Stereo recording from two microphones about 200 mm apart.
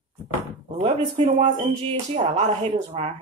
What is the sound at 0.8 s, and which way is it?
Speech, 30° right (ahead or behind).